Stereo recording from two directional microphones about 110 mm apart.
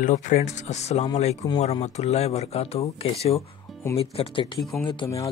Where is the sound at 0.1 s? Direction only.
90° left; by 4.5 s 60° left (ahead or behind).